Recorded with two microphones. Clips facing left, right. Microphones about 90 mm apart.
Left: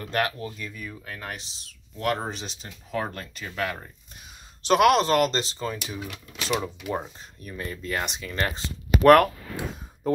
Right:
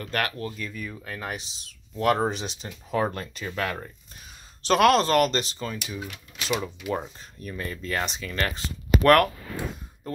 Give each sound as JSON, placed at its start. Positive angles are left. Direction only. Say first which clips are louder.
{"t": 0.0, "sound": "speech", "louder": "left 2 dB", "side_deg": 20}
{"t": 4.6, "sound": "speech", "louder": "even", "side_deg": 15}
{"t": 6.6, "sound": "speech", "louder": "even", "side_deg": 10}